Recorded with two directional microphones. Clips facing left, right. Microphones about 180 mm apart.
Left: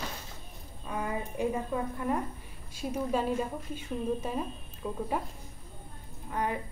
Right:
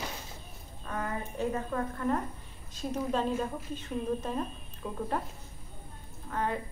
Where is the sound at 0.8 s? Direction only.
10° left (ahead or behind).